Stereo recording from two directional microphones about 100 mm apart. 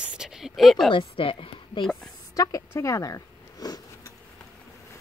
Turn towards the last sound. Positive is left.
turn(degrees=35)  # may be behind; listen again after turning